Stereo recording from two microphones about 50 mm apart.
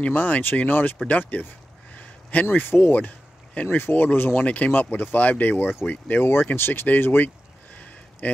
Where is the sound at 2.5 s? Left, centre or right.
Left.